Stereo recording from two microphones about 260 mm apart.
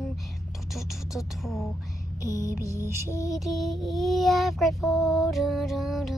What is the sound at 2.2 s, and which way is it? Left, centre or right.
Music, centre.